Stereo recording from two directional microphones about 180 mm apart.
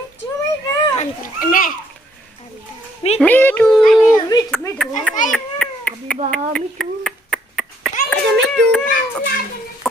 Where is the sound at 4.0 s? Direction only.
20° left (ahead or behind).